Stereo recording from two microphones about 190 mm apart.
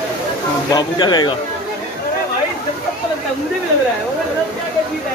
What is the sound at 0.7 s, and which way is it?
Speech, 25° left (ahead or behind).